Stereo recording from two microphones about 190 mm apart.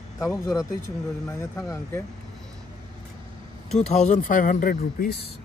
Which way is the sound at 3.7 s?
40° left (ahead or behind).